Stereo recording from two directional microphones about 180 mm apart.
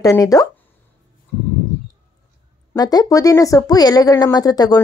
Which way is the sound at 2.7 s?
20° left (ahead or behind).